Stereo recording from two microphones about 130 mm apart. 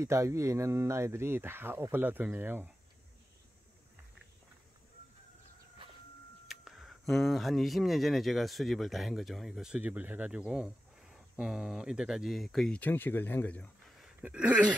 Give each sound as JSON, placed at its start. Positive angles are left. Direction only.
{"t": 0.0, "sound": "speech", "side_deg": -20}
{"t": 6.4, "sound": "speech", "side_deg": -5}
{"t": 14.2, "sound": "a sound", "side_deg": -10}